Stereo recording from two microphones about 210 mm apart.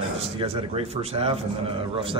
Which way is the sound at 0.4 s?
25° right (ahead or behind).